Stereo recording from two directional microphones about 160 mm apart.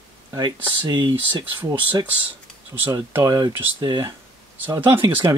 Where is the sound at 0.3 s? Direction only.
25° right (ahead or behind).